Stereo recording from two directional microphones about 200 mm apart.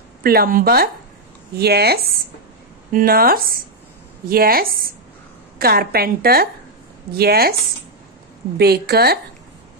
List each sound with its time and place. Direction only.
0.2 s a woman's voice: 50° right (ahead or behind)
8.5 s a woman's voice: 55° right (ahead or behind)